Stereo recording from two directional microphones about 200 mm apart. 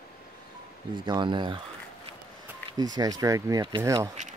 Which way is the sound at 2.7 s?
20° right (ahead or behind).